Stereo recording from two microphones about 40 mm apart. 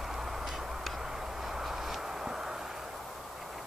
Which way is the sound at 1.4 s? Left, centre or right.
Centre.